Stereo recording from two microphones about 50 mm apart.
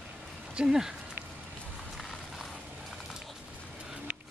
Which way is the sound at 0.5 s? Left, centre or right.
Centre.